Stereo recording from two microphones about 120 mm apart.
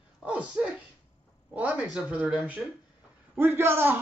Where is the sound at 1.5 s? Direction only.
15° right (ahead or behind).